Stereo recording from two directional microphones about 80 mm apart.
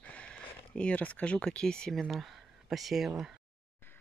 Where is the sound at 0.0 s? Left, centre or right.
Centre.